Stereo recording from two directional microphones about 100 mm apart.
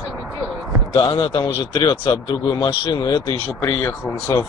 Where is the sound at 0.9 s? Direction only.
45° left (ahead or behind).